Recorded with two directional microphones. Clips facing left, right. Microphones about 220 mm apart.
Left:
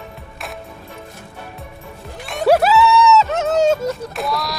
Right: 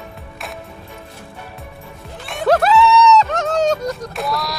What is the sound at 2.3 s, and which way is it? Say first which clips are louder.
Music: left 1 dB; 5° left (ahead or behind).